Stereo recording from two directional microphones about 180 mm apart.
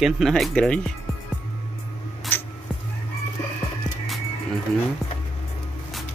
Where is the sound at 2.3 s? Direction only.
10° left (ahead or behind).